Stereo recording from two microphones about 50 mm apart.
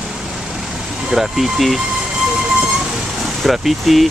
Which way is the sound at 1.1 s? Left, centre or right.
Centre.